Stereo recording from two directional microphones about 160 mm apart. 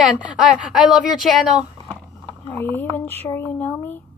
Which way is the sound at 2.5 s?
15° left (ahead or behind).